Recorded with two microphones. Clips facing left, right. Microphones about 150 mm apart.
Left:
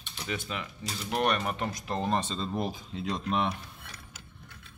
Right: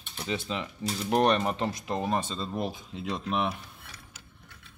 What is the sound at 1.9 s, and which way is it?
Speech, 10° right (ahead or behind).